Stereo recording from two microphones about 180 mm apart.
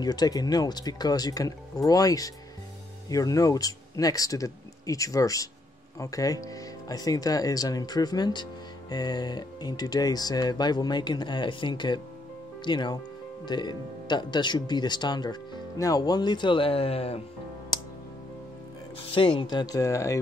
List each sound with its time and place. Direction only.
0.0 s speech: 20° left (ahead or behind)
19.1 s speech: 30° left (ahead or behind)